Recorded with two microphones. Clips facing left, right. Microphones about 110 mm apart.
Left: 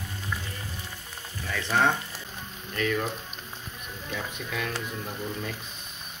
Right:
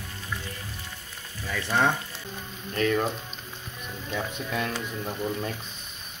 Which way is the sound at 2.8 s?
40° right (ahead or behind).